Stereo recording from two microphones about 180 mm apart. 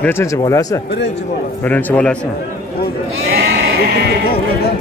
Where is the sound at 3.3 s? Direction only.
60° right (ahead or behind).